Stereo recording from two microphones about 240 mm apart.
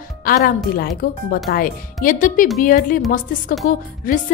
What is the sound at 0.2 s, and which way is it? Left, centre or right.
A woman's voice, left.